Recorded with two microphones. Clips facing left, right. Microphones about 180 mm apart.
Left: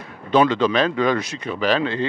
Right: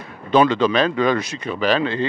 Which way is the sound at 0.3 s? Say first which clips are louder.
Right 1 dB; 10° right (ahead or behind).